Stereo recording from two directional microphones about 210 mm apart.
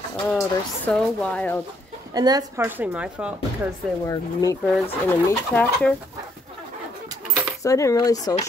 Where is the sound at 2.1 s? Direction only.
20° right (ahead or behind).